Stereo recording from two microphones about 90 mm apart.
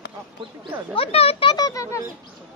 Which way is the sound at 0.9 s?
90° left.